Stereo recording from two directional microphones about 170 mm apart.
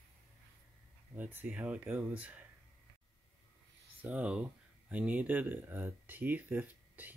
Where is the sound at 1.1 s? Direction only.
10° right (ahead or behind).